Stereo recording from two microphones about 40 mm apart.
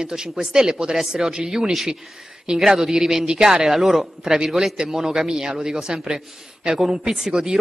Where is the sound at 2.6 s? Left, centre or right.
Centre.